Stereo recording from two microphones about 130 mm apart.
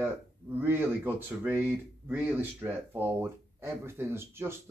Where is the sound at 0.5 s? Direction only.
15° right (ahead or behind).